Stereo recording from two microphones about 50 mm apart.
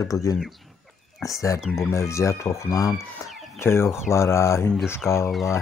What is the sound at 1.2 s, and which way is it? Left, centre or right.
Speech, left.